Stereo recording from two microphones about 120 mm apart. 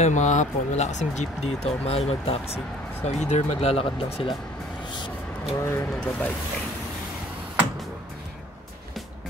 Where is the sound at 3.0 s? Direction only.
70° left (ahead or behind); by 4.3 s 55° left (ahead or behind).